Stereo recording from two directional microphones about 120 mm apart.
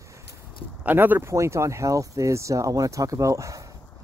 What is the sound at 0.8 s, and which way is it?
Speech, 15° right (ahead or behind).